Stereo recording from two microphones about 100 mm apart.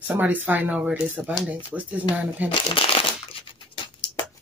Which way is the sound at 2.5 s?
65° left (ahead or behind).